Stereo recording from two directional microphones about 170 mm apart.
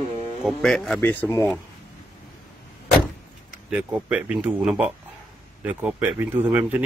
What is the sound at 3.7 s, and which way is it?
Speech, 10° right (ahead or behind).